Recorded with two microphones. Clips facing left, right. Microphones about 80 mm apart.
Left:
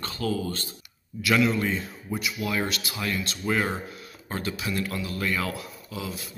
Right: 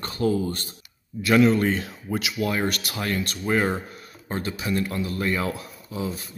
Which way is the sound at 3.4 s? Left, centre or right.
Right.